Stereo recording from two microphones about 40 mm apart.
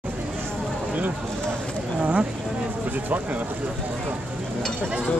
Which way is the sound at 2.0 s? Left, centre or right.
Right.